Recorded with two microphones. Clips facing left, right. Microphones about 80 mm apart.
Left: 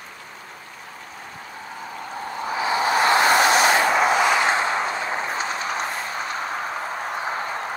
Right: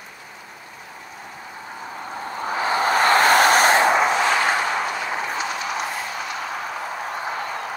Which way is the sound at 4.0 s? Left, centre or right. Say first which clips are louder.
Left 1 dB; centre.